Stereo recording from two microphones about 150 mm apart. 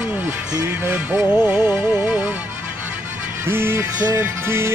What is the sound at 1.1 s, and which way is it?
Music, 10° right (ahead or behind).